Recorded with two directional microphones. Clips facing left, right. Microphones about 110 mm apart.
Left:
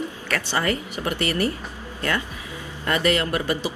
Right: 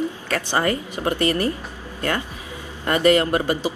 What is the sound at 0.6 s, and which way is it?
Speech, 20° right (ahead or behind).